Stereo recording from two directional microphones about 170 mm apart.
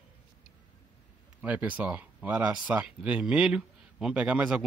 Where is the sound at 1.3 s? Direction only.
10° right (ahead or behind).